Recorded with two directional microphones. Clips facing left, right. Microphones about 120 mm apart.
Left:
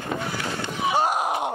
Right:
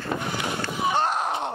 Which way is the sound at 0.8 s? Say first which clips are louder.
Left 2 dB; 10° left (ahead or behind).